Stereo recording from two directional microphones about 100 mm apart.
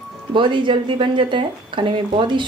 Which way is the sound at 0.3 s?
55° right (ahead or behind).